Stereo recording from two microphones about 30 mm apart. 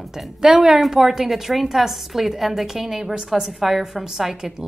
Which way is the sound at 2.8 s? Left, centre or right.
Centre.